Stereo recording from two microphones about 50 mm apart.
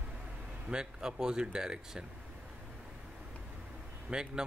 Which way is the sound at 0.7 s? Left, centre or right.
Centre.